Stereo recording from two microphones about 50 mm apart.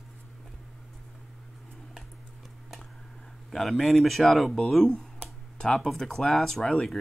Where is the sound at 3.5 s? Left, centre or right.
Centre.